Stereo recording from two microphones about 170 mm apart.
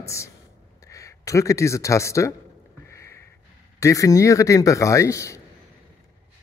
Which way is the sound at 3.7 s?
20° left (ahead or behind).